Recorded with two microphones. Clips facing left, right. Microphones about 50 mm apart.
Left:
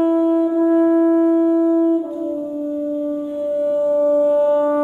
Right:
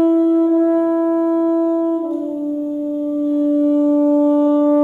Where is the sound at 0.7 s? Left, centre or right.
Centre.